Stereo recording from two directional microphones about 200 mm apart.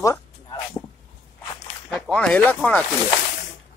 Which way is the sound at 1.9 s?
5° left (ahead or behind).